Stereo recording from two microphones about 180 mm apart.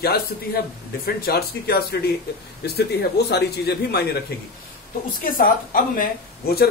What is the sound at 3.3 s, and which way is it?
Speech, 65° left (ahead or behind).